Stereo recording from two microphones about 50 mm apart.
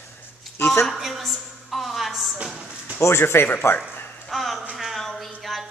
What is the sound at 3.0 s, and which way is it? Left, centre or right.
Speech, left.